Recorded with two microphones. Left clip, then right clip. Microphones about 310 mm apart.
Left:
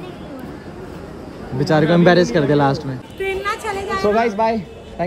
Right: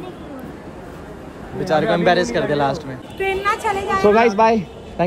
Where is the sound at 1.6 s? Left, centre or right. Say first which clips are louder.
Left 2 dB; centre.